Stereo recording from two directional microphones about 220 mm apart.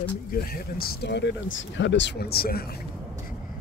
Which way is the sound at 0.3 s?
40° left (ahead or behind).